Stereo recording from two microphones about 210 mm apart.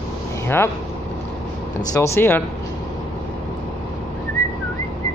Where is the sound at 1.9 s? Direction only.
15° left (ahead or behind).